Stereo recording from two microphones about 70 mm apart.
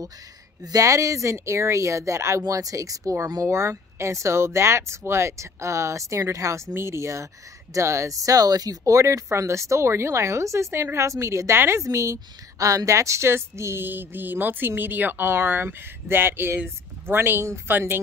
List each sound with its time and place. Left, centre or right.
0.7 s speech: right
2.4 s speech: right
3.4 s speech: right